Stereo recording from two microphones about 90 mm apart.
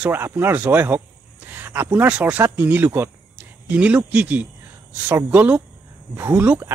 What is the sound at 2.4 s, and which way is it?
Speech, 25° right (ahead or behind).